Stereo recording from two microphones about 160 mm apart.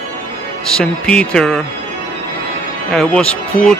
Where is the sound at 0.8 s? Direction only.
5° left (ahead or behind).